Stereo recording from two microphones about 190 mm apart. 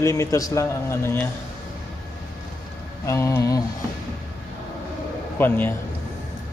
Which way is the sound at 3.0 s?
15° left (ahead or behind).